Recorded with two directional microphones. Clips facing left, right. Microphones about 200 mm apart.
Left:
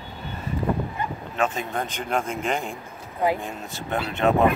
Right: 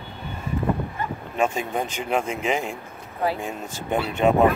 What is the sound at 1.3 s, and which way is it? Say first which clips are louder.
Speech: right 2 dB; 10° right (ahead or behind).